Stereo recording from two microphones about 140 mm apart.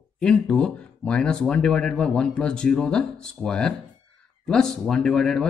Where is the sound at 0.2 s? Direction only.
5° left (ahead or behind).